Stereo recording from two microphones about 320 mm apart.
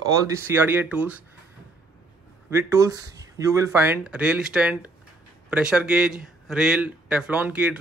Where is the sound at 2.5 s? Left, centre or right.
Centre.